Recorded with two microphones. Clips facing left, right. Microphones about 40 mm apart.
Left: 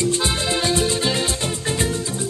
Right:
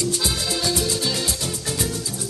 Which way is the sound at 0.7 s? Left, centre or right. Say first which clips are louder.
Left 3 dB; left.